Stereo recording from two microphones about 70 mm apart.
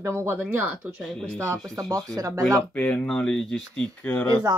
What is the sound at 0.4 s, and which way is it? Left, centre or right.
Speech, right.